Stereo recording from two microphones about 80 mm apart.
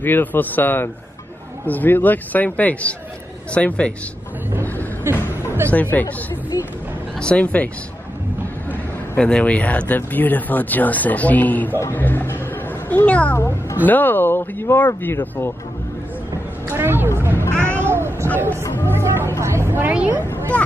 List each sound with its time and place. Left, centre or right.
0.0 s speech: left
5.1 s a sound: right
5.7 s speech: left
6.5 s a sound: left
7.2 s speech: centre
9.1 s speech: centre
16.6 s a sound: right
18.9 s music: right
19.4 s a woman's voice: right
19.8 s a woman's voice: centre